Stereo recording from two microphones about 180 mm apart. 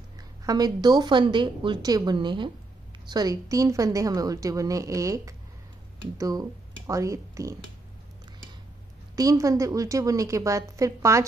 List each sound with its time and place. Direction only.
0.5 s a woman's voice: 20° right (ahead or behind)
9.1 s a woman's voice: 20° right (ahead or behind)